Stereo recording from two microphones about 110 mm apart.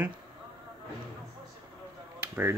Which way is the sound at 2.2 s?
15° right (ahead or behind).